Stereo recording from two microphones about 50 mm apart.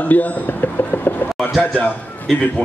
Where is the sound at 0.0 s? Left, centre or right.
Left.